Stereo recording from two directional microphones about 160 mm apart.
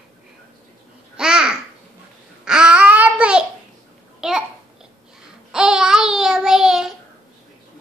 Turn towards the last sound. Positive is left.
turn(degrees=-5)  # may be behind; listen again after turning